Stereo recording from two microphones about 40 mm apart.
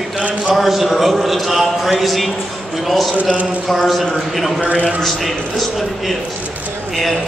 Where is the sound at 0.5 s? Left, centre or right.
Centre.